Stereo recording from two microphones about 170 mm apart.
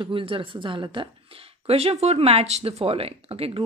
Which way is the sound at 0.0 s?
30° right (ahead or behind).